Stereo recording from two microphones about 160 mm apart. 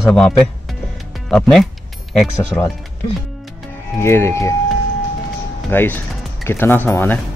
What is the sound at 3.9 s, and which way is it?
Speech, 15° left (ahead or behind).